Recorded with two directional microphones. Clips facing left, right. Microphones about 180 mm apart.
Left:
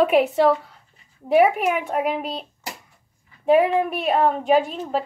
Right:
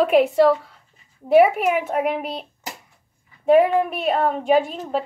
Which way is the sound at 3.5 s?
Centre (ahead or behind).